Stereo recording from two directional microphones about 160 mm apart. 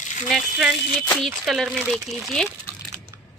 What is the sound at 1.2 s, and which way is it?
A woman's voice, centre (ahead or behind).